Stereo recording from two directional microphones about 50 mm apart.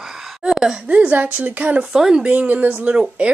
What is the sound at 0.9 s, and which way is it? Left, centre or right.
Speech, right.